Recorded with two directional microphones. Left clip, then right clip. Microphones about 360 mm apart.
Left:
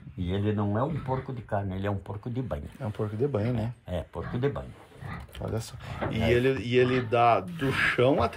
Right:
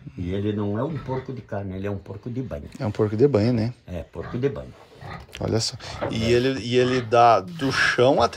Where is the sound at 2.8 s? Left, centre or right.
Right.